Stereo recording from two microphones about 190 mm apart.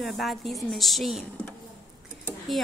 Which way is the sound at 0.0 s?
Centre (ahead or behind).